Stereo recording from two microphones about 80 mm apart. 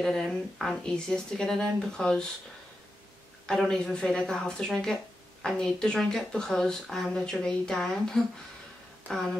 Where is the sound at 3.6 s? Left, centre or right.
Centre.